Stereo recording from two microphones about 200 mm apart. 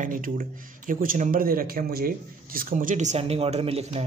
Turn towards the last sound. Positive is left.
turn(degrees=-30)  # may be behind; listen again after turning